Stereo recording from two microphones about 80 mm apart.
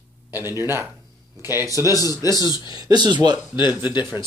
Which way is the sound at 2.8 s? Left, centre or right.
Right.